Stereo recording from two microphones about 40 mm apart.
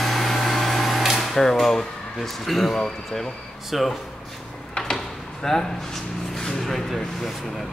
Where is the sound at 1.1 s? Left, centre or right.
Centre.